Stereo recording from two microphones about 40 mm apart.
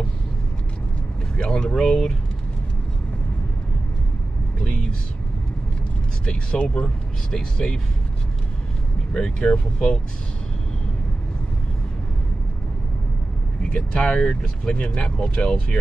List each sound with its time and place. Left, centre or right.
1.3 s speech: left
4.6 s a sound: left
6.2 s speech: left
7.3 s speech: centre
9.4 s speech: left
13.7 s speech: left